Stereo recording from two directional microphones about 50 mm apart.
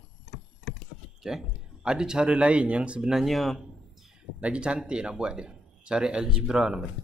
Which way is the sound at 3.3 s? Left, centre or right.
Centre.